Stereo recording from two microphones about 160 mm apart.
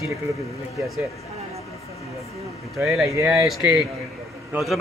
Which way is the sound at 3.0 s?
15° right (ahead or behind).